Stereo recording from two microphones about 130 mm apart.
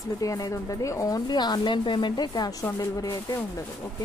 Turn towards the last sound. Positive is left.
turn(degrees=30)  # may be behind; listen again after turning